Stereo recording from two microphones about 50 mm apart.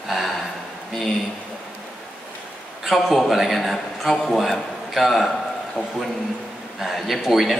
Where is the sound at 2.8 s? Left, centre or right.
Centre.